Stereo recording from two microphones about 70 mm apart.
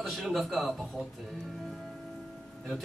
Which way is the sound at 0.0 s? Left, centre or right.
Centre.